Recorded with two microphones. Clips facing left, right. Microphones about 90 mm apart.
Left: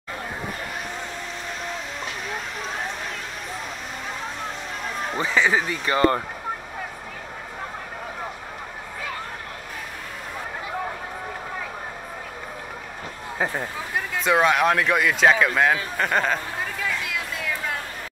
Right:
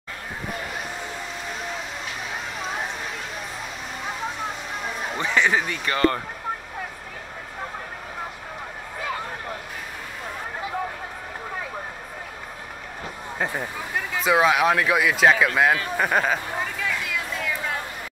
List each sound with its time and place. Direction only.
5.2 s speech: 5° left (ahead or behind)
5.9 s speech: 20° left (ahead or behind)
13.4 s speech: centre (ahead or behind)